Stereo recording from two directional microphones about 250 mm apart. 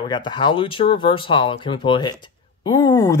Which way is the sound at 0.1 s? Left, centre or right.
Centre.